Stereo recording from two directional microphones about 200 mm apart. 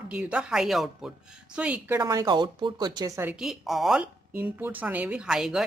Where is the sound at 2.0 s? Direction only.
15° right (ahead or behind).